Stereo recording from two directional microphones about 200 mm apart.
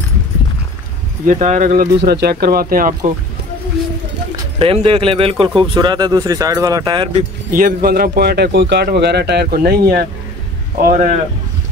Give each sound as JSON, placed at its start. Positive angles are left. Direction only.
{"t": 1.2, "sound": "speech", "side_deg": -35}
{"t": 2.0, "sound": "speech", "side_deg": -55}
{"t": 4.6, "sound": "speech", "side_deg": -25}
{"t": 7.2, "sound": "speech", "side_deg": -45}